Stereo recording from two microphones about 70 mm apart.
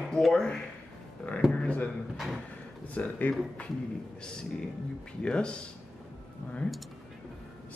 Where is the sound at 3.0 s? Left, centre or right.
Left.